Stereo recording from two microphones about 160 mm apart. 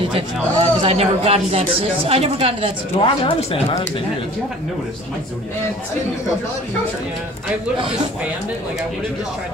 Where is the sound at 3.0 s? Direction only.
35° left (ahead or behind).